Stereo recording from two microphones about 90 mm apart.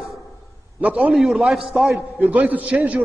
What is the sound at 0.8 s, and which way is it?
A man's voice, 15° right (ahead or behind).